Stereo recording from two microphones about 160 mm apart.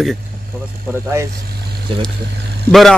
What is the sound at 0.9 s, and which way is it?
Speech, 15° right (ahead or behind).